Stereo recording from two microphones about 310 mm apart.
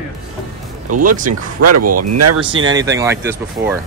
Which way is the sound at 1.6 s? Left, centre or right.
Right.